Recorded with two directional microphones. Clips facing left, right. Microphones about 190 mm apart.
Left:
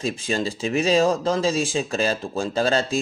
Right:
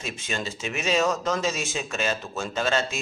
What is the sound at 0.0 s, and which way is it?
Speech, 35° left (ahead or behind).